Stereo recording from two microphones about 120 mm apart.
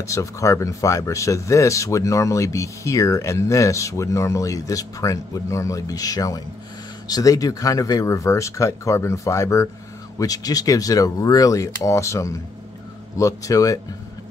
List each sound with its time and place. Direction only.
0.0 s speech: 25° left (ahead or behind)